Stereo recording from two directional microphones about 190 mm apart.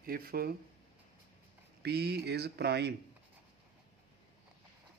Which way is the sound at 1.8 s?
60° right (ahead or behind).